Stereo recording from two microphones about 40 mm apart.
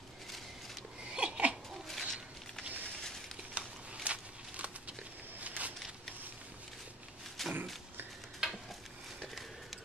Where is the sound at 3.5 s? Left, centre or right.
Right.